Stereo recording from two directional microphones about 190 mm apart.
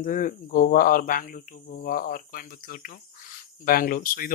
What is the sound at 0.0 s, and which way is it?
Speech, 45° left (ahead or behind).